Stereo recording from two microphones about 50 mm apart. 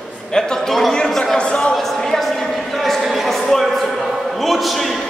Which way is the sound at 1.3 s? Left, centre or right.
Centre.